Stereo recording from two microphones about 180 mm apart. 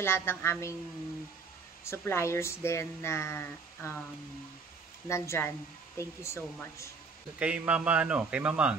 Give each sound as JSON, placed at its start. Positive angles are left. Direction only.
{"t": 0.0, "sound": "speech", "side_deg": 15}
{"t": 1.9, "sound": "speech", "side_deg": 15}
{"t": 5.0, "sound": "speech", "side_deg": 15}
{"t": 7.3, "sound": "a man's voice", "side_deg": -5}